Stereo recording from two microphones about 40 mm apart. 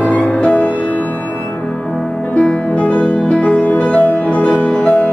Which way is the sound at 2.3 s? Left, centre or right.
Left.